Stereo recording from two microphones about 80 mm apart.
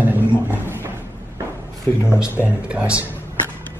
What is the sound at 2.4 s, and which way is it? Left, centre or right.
Speech, centre.